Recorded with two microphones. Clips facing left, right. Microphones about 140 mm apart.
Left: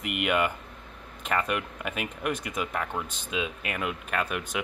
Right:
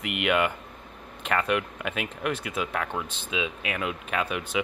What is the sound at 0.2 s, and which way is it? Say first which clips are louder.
Speech: right 2 dB; 5° left (ahead or behind).